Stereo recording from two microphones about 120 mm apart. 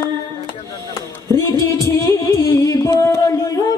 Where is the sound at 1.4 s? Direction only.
25° left (ahead or behind).